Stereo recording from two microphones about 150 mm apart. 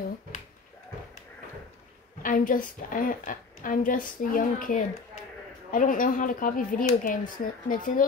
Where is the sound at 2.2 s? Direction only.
65° left (ahead or behind).